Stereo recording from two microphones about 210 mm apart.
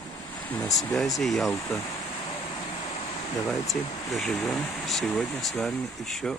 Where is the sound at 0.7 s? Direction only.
Centre (ahead or behind).